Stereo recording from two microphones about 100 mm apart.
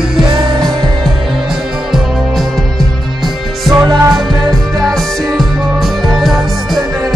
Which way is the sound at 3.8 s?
45° right (ahead or behind).